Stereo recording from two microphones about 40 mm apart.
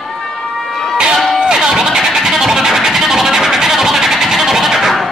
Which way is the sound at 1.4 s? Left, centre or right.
Centre.